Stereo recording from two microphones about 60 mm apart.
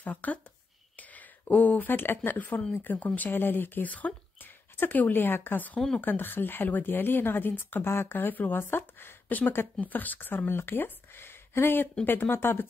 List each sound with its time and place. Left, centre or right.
0.0 s speech: left